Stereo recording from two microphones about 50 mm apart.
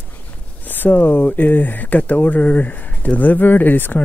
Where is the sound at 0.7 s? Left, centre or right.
Left.